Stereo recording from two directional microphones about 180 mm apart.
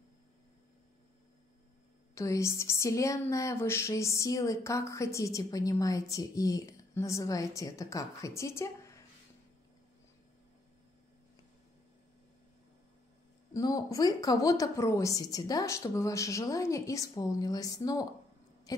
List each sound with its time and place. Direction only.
2.1 s speech: 15° left (ahead or behind)
13.5 s a woman's voice: 20° left (ahead or behind)